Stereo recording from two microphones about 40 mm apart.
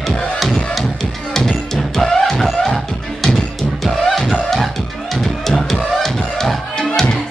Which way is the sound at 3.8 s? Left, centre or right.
Centre.